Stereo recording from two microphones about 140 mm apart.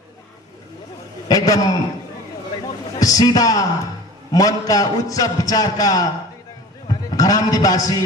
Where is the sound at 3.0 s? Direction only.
25° left (ahead or behind).